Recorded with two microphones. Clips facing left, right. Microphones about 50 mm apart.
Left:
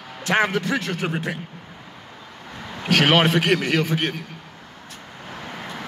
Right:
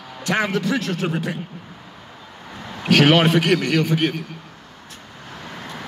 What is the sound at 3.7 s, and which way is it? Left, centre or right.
Speech, left.